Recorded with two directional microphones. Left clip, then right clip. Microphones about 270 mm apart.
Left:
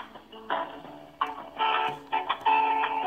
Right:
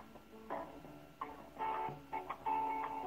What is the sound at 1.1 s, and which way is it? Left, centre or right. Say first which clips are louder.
Music: left 15 dB; centre.